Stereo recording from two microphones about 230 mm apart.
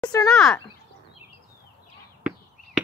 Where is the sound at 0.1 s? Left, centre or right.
Centre.